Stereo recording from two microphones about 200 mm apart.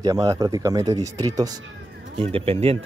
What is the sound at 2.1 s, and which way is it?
Speech, 30° right (ahead or behind).